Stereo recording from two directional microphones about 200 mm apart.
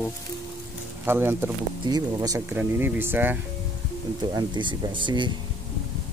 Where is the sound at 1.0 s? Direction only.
10° right (ahead or behind).